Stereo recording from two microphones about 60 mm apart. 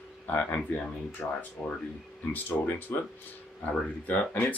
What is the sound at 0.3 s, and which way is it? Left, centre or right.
Speech, left.